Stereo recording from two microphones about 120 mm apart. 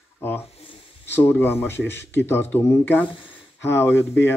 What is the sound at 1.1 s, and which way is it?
Speech, 20° left (ahead or behind).